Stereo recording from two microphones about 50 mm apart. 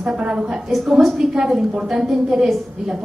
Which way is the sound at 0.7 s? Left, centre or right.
Centre.